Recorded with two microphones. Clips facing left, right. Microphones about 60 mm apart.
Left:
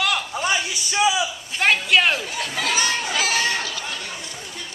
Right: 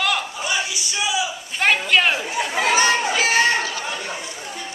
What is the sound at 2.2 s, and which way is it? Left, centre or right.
Chatter, right.